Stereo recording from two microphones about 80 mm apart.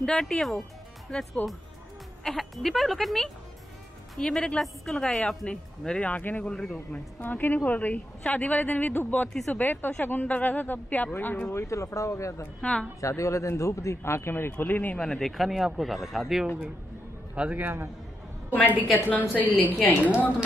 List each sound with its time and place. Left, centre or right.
0.0 s speech: centre
7.2 s a woman's voice: left
11.5 s speech: left
15.0 s speech: centre
17.4 s a man's voice: right
19.0 s a woman's voice: centre